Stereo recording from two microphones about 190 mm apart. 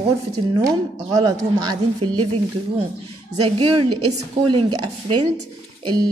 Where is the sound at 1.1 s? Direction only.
20° right (ahead or behind).